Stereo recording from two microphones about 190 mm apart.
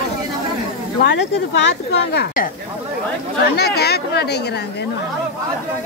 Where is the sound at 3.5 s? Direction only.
55° left (ahead or behind).